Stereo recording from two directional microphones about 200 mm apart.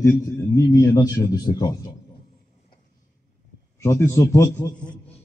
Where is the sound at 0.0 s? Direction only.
15° left (ahead or behind).